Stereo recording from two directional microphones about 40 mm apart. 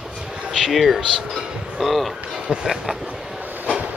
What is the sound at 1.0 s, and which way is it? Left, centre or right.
Speech, centre.